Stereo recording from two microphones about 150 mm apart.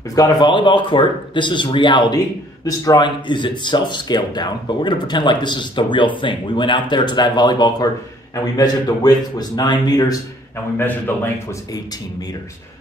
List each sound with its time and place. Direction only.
0.1 s a man's voice: 25° left (ahead or behind)
10.8 s a man's voice: 15° left (ahead or behind)